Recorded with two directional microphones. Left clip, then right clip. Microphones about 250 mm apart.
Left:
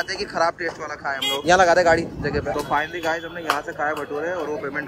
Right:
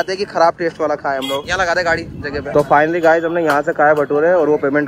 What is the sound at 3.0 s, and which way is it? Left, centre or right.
Speech, left.